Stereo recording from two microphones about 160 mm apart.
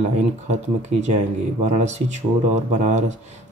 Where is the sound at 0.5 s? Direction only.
45° right (ahead or behind).